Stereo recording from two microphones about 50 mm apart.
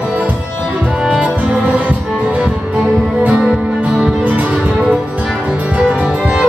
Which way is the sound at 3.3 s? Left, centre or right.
Centre.